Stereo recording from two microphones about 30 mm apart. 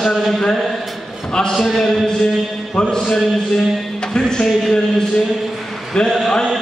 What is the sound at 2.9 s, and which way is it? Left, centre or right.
Speech, left.